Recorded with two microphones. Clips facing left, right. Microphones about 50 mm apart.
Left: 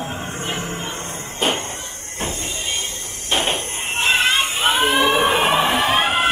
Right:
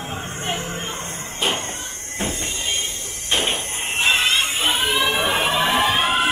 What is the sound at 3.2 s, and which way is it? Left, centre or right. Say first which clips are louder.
Hammer: left 1 dB; left.